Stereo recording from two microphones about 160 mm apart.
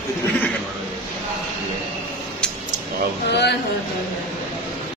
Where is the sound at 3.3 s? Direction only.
90° left.